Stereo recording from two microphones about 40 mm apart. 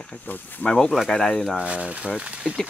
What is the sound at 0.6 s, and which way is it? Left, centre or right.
Speech, left.